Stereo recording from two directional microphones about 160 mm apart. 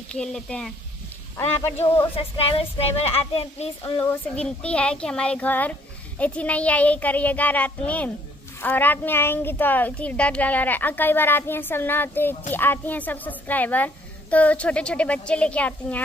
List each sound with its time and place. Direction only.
0.1 s speech: 5° left (ahead or behind)
2.1 s child singing: 35° left (ahead or behind)
4.0 s speech: 10° left (ahead or behind)